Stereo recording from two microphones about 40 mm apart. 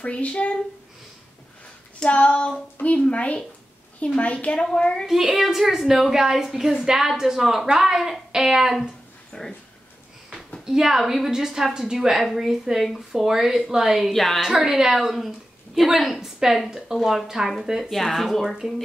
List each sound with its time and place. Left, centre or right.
0.0 s speech: left
2.0 s a sound: left
2.8 s speech: left
4.7 s a sound: left
5.3 s a woman's voice: centre
8.3 s a sound: centre
9.3 s speech: centre
10.6 s a woman's voice: centre
14.1 s a woman's voice: centre
14.4 s a woman's voice: centre
18.4 s a woman's voice: centre